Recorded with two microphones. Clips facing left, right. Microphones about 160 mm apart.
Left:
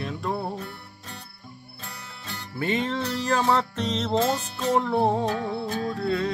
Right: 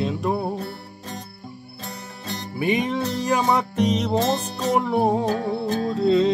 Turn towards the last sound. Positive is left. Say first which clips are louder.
# right 8 dB
turn(degrees=-20)  # may be behind; listen again after turning